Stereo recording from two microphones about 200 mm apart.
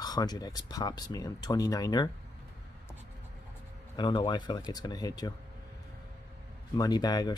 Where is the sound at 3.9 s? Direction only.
25° left (ahead or behind).